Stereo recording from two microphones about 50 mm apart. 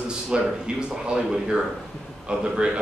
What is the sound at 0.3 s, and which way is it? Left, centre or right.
A man's voice, centre.